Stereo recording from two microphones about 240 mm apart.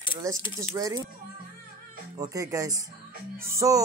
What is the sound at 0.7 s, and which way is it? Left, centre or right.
Speech, centre.